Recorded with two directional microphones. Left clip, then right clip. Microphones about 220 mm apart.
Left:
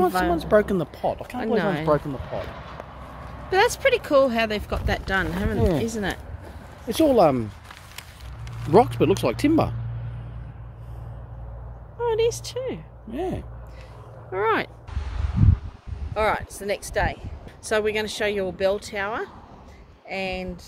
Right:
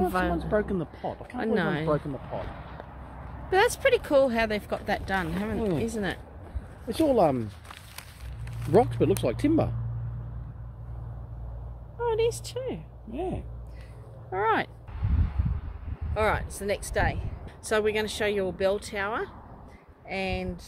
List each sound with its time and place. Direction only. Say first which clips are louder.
0.3 s speech: left 8 dB; 45° left (ahead or behind)
1.4 s speech: left 3 dB; 15° right (ahead or behind)
1.9 s speech: left 6 dB; 45° left (ahead or behind)
3.4 s speech: left 3 dB; 10° right (ahead or behind)
5.6 s speech: left 6 dB; 35° left (ahead or behind)
5.9 s speech: left 3 dB; centre (ahead or behind)
6.9 s speech: left 5 dB; 25° left (ahead or behind)
8.7 s speech: left 5 dB; 25° left (ahead or behind)
12.0 s speech: left 4 dB; 5° right (ahead or behind)
13.1 s speech: left 4 dB; 20° left (ahead or behind)
14.3 s speech: left 3 dB; 5° right (ahead or behind)
15.0 s a sound: right 1 dB; 40° left (ahead or behind)
16.2 s speech: left 3 dB; centre (ahead or behind)